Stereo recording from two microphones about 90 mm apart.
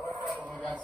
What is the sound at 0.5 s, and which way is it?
Music, 15° left (ahead or behind).